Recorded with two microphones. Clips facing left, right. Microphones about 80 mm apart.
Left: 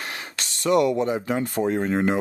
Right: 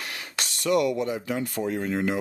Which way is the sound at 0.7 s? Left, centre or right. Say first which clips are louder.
Left 4 dB; left.